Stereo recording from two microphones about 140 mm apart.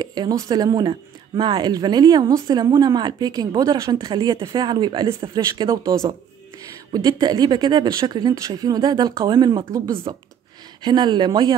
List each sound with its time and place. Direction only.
0.0 s speech: 30° right (ahead or behind)
10.8 s speech: 30° right (ahead or behind)